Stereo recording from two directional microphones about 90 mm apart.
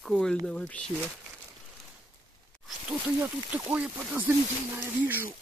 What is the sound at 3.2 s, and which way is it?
Speech, 15° right (ahead or behind).